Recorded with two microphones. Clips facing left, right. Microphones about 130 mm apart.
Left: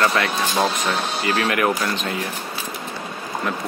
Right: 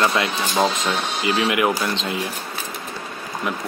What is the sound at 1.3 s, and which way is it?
Speech, 15° right (ahead or behind).